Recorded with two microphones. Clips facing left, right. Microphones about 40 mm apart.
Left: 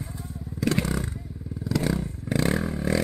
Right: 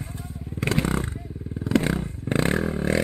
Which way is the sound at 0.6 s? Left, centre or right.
Right.